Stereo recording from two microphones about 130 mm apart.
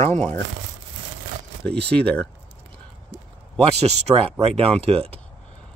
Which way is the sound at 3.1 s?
55° right (ahead or behind).